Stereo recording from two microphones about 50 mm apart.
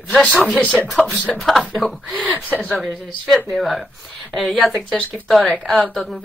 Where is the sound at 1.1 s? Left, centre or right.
Left.